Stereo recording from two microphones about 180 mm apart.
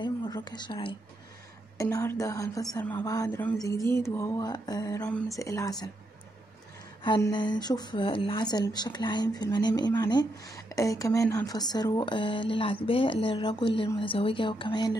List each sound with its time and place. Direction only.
0.0 s speech: 25° left (ahead or behind)
7.3 s speech: 25° left (ahead or behind)